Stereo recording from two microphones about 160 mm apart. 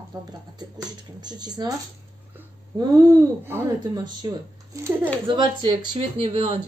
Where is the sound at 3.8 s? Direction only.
25° right (ahead or behind).